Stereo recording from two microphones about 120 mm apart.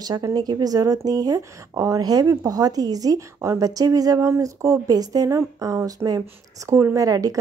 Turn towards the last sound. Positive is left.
turn(degrees=-30)  # may be behind; listen again after turning